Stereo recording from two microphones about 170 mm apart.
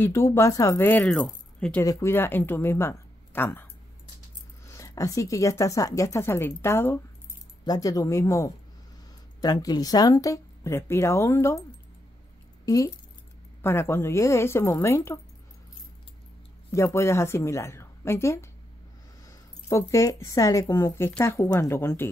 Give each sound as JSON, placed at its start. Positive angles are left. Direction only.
{"t": 0.0, "sound": "speech", "side_deg": 15}
{"t": 4.6, "sound": "speech", "side_deg": 20}
{"t": 12.6, "sound": "speech", "side_deg": 20}
{"t": 16.7, "sound": "speech", "side_deg": 15}